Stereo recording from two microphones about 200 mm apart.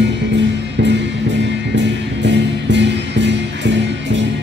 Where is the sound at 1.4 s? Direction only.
60° right (ahead or behind).